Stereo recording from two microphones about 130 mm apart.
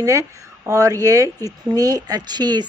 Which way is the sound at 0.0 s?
25° right (ahead or behind).